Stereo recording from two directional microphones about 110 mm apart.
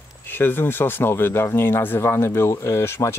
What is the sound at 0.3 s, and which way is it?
Speech, 20° left (ahead or behind).